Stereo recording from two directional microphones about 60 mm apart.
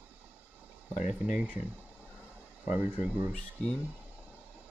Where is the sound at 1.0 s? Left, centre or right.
Right.